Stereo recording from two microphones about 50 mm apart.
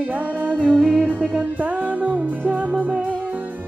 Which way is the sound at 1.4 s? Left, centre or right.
Right.